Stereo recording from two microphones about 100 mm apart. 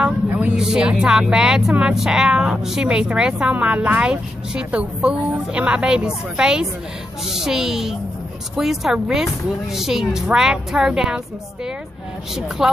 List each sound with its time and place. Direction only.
0.0 s vehicle: 15° right (ahead or behind)
0.6 s a woman's voice: 10° right (ahead or behind)